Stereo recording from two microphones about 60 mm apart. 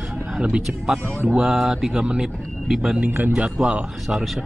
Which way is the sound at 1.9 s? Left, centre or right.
Centre.